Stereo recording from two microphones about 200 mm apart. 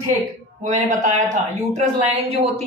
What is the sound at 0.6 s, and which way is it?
A woman's voice, 40° right (ahead or behind).